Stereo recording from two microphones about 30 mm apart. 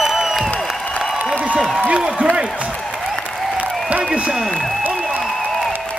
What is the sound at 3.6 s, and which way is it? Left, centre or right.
Applause, right.